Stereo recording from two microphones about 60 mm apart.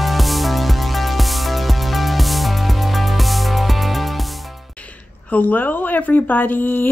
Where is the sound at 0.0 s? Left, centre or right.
Centre.